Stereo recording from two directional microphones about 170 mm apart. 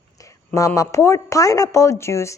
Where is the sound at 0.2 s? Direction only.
20° left (ahead or behind).